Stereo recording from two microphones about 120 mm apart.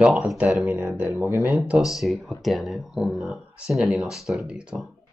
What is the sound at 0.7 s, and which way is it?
Speech, 15° right (ahead or behind).